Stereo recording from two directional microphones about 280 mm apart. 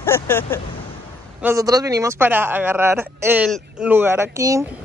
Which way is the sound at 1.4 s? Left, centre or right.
Centre.